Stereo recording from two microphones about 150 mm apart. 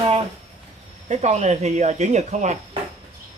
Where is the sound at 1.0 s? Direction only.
50° right (ahead or behind).